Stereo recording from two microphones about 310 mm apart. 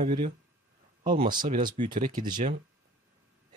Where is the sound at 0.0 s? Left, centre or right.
Right.